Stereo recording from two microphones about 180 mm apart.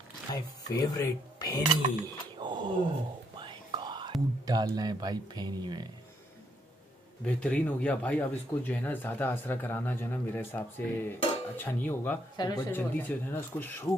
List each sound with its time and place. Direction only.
0.3 s speech: 20° left (ahead or behind)
2.3 s a sound: 25° right (ahead or behind)
3.3 s whispering: 25° right (ahead or behind)
4.5 s speech: 20° right (ahead or behind)
7.2 s speech: 5° left (ahead or behind)
12.4 s speech: 20° left (ahead or behind)
12.7 s speech: 10° left (ahead or behind)